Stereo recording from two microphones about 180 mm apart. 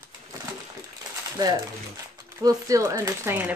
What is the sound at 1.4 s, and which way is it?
Speech, 20° right (ahead or behind).